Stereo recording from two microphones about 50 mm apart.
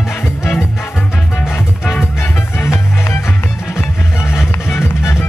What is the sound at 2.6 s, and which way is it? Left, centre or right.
Music, left.